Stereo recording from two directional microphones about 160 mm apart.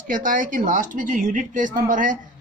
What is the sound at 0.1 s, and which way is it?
Speech, 55° right (ahead or behind).